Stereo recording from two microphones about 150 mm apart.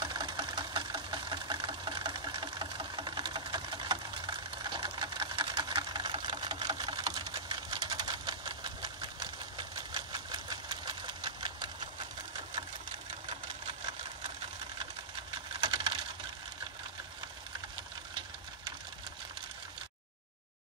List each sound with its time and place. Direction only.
0.0 s engine: 30° right (ahead or behind)
13.3 s engine: 35° right (ahead or behind)
15.3 s a sound: 30° right (ahead or behind)